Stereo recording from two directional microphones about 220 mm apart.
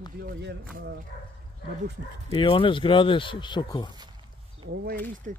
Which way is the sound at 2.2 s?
25° left (ahead or behind).